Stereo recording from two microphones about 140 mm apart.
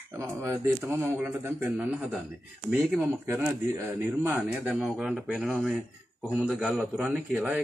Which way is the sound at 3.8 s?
15° right (ahead or behind).